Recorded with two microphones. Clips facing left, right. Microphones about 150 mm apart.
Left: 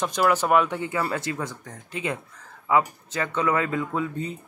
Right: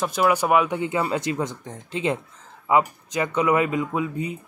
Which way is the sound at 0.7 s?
20° right (ahead or behind).